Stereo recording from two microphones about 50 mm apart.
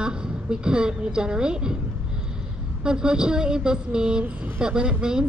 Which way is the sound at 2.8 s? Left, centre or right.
Centre.